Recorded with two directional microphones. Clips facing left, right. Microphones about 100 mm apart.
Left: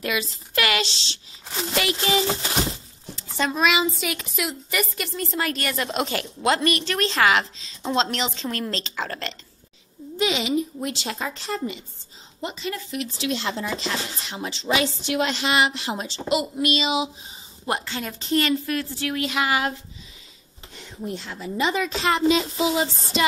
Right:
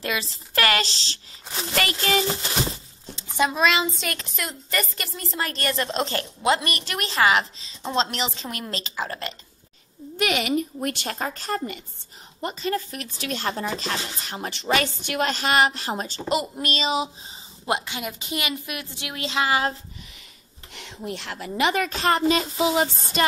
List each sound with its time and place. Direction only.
0.0 s speech: 30° right (ahead or behind)
1.8 s speech: 50° right (ahead or behind)
3.2 s a sound: 10° right (ahead or behind)
3.6 s a woman's voice: 5° left (ahead or behind)
10.1 s speech: 60° right (ahead or behind); by 17.1 s 40° right (ahead or behind)
17.6 s a woman's voice: 15° right (ahead or behind)
20.7 s a woman's voice: 70° right (ahead or behind); by 23.2 s 45° right (ahead or behind)